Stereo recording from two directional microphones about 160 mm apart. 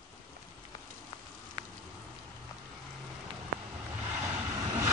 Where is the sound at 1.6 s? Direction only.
25° right (ahead or behind).